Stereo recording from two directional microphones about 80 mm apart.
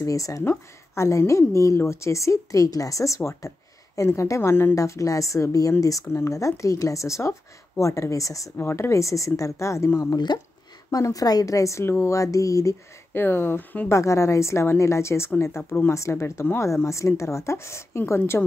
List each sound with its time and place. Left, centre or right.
0.0 s a woman's voice: left
4.7 s a woman's voice: left
8.5 s a woman's voice: left
13.1 s speech: left
13.8 s speech: left